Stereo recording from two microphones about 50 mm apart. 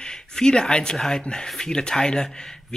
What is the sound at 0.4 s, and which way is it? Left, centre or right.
Speech, centre.